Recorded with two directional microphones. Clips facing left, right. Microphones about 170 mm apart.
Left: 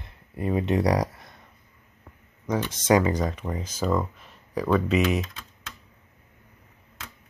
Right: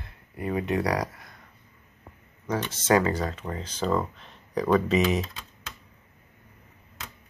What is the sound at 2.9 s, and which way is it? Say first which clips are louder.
Speech: left 2 dB; 15° left (ahead or behind).